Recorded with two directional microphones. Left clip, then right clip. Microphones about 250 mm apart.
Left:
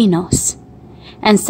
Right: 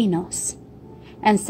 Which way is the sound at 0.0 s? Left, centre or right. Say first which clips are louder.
Left 8 dB; centre.